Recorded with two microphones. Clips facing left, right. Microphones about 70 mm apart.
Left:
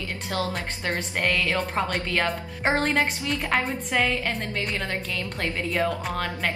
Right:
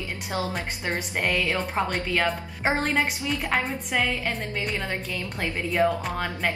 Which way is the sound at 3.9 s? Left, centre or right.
Centre.